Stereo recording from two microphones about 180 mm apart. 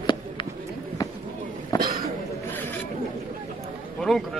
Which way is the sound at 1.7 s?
20° left (ahead or behind).